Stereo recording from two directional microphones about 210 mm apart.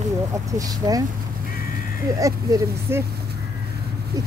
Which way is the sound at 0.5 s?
15° right (ahead or behind).